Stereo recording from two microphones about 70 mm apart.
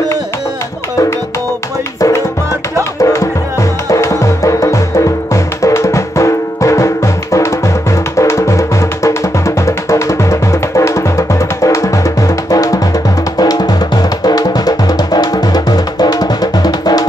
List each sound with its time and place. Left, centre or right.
2.0 s music: left
8.2 s music: left
13.4 s drum: left
14.2 s music: left